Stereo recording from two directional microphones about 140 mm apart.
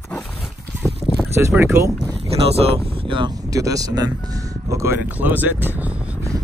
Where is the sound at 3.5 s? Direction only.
25° right (ahead or behind).